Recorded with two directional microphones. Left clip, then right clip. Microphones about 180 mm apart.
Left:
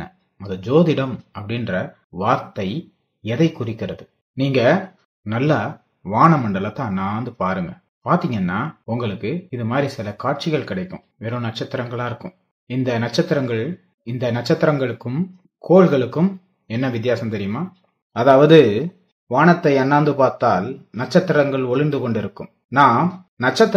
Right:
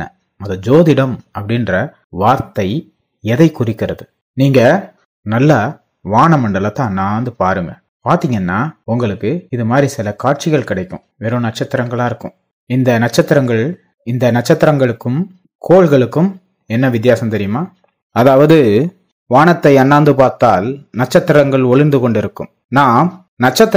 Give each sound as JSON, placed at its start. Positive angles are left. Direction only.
{"t": 0.0, "sound": "speech", "side_deg": -45}
{"t": 18.1, "sound": "speech", "side_deg": -50}